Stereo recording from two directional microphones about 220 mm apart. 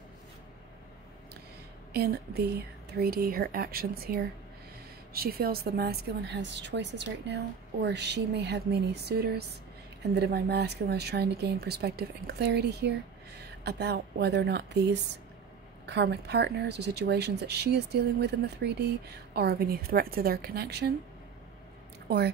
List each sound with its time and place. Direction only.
2.0 s speech: 45° right (ahead or behind)